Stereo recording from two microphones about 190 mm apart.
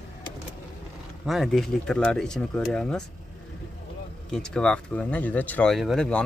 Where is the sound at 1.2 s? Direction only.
Centre (ahead or behind).